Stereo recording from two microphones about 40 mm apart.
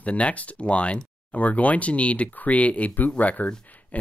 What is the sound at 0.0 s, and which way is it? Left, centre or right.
Speech, left.